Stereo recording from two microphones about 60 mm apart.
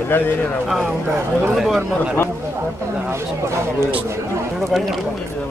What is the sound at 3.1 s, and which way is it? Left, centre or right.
Speech, right.